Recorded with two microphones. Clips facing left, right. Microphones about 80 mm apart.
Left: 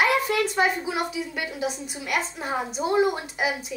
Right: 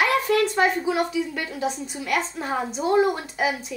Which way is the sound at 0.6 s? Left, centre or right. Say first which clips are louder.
Right 3 dB; centre.